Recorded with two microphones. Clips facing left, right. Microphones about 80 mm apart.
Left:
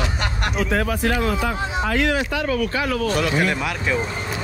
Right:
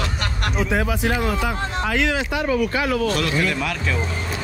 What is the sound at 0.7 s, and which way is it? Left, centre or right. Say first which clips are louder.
Speech: left 1 dB; centre.